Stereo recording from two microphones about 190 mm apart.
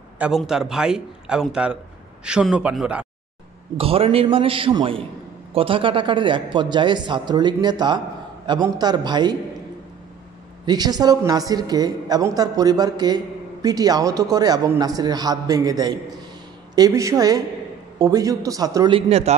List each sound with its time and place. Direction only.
0.2 s a man's voice: 5° right (ahead or behind)
3.7 s a woman's voice: 30° right (ahead or behind)
10.6 s a woman's voice: 20° right (ahead or behind)
18.9 s speech: 35° right (ahead or behind)